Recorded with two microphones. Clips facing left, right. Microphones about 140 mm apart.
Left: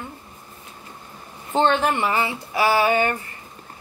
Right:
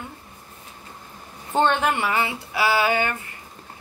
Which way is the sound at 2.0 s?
25° left (ahead or behind).